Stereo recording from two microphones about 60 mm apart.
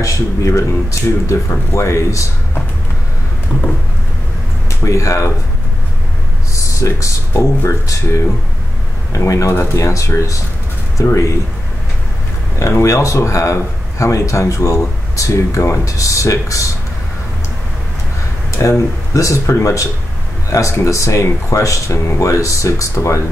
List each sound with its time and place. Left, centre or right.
0.0 s a man's voice: left
1.7 s a man's voice: left
4.8 s a man's voice: left
6.5 s a man's voice: left
12.5 s a man's voice: left
18.6 s a man's voice: left